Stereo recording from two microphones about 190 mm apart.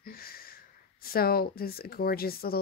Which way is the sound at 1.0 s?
50° left (ahead or behind).